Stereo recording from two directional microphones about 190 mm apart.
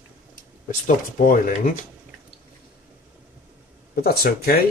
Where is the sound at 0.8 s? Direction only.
45° left (ahead or behind).